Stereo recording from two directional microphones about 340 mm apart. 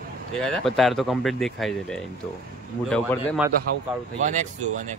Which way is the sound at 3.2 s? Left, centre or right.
Centre.